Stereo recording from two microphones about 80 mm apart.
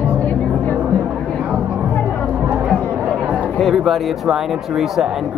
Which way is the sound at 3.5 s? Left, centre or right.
Centre.